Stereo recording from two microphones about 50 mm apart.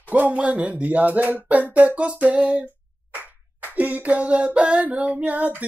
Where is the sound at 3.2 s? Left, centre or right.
Right.